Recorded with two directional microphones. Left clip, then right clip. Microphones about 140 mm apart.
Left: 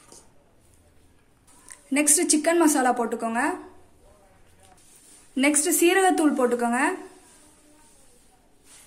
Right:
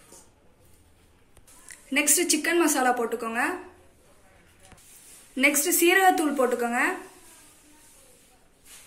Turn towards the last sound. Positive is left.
turn(degrees=80)